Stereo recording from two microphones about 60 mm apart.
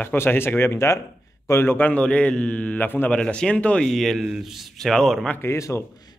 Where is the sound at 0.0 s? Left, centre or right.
Left.